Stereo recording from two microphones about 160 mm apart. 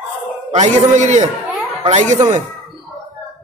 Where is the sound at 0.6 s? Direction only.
45° right (ahead or behind).